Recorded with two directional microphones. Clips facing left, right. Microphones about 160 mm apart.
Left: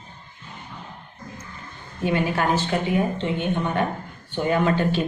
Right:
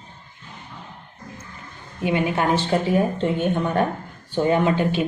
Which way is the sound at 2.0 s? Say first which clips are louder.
Right 1 dB; 15° right (ahead or behind).